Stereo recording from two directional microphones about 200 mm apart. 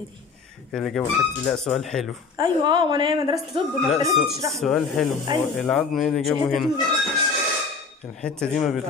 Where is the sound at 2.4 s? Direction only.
25° right (ahead or behind).